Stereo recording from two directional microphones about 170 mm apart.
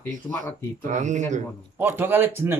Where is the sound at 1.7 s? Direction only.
10° right (ahead or behind).